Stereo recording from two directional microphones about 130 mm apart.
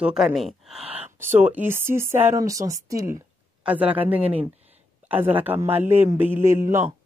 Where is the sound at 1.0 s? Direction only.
15° right (ahead or behind).